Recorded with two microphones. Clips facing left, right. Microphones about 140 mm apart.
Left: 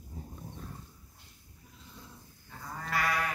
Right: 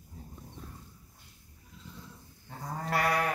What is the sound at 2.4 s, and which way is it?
Sheep, 35° right (ahead or behind).